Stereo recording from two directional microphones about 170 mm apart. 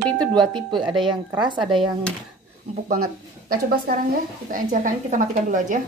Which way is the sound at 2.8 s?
55° right (ahead or behind).